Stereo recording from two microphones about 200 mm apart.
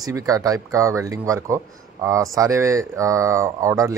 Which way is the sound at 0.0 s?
15° right (ahead or behind).